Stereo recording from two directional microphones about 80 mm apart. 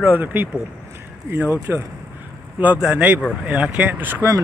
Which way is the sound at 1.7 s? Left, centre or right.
Right.